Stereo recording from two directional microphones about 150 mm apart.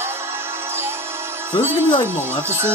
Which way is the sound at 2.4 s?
15° right (ahead or behind).